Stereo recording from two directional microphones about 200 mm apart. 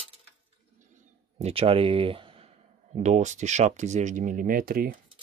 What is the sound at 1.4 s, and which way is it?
Speech, 30° right (ahead or behind).